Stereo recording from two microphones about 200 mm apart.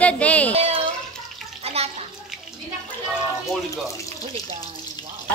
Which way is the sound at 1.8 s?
30° right (ahead or behind).